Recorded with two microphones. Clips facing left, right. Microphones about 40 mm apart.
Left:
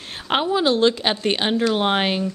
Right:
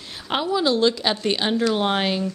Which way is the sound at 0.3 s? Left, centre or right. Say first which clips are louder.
Left 2 dB; left.